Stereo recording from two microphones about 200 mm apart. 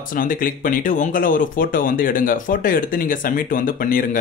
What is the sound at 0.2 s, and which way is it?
Speech, 45° left (ahead or behind).